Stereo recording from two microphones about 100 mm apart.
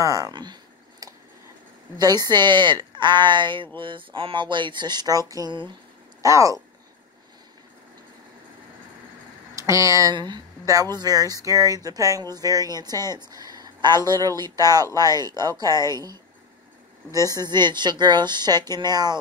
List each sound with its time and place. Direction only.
0.0 s a sound: 35° right (ahead or behind)
2.0 s a woman's voice: 40° right (ahead or behind)
6.2 s speech: 35° right (ahead or behind)
9.6 s speech: 30° right (ahead or behind)
10.1 s a woman's voice: 45° right (ahead or behind)